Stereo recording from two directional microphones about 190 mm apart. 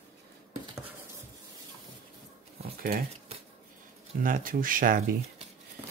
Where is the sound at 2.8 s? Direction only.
50° right (ahead or behind).